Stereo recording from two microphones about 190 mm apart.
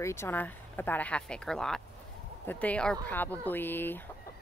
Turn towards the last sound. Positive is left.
turn(degrees=10)  # may be behind; listen again after turning